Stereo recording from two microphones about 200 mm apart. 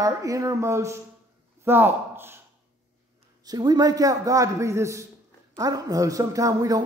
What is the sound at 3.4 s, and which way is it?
A man's voice, 20° right (ahead or behind).